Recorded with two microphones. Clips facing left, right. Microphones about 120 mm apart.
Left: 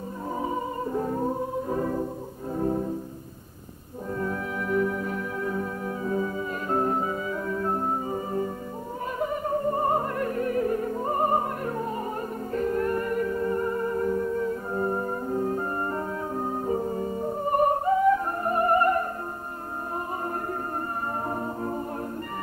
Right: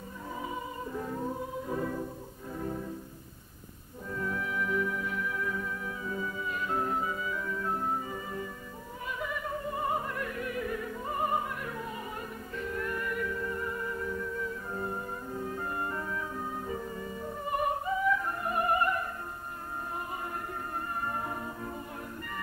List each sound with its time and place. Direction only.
0.4 s music: 40° left (ahead or behind)
4.2 s music: 40° left (ahead or behind)
21.3 s music: 40° left (ahead or behind)